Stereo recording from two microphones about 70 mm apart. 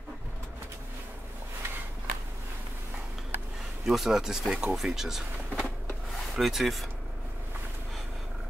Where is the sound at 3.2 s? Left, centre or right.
Centre.